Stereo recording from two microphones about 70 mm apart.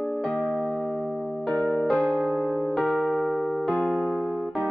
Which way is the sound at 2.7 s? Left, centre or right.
Centre.